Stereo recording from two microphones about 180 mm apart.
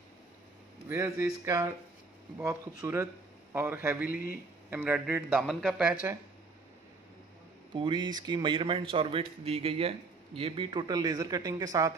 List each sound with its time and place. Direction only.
0.8 s a man's voice: 15° right (ahead or behind)
4.1 s speech: 55° left (ahead or behind)
4.6 s a man's voice: 10° right (ahead or behind)
7.7 s a man's voice: 25° right (ahead or behind)